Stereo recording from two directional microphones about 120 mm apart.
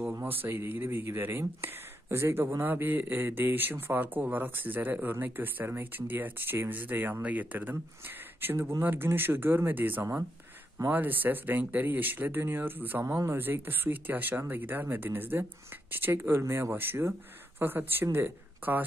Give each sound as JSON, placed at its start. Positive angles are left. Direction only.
{"t": 0.0, "sound": "speech", "side_deg": -15}